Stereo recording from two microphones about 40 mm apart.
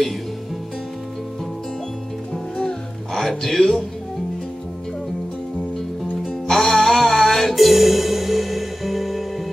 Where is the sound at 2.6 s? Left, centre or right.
Centre.